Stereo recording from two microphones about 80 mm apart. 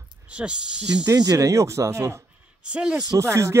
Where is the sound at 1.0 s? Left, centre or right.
Right.